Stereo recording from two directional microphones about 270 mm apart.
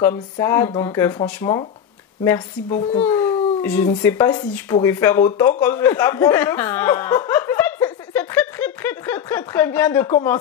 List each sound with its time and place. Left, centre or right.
0.0 s speech: centre
3.1 s speech: centre
5.6 s chuckle: centre